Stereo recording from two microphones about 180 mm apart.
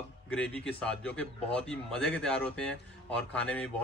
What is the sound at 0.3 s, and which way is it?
Speech, 5° left (ahead or behind).